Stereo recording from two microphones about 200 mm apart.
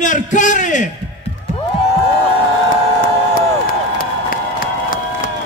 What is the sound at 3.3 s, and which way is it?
Crowd, 45° left (ahead or behind).